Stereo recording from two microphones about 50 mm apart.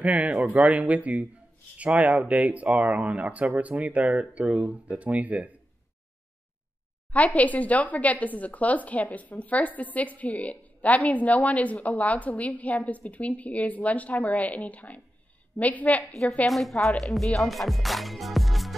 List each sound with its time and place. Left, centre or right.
0.0 s speech: right
7.1 s speech: left
16.0 s speech: centre